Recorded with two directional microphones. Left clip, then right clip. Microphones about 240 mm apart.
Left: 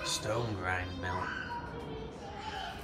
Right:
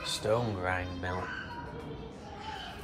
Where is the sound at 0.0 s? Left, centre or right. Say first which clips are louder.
Right 4 dB; centre.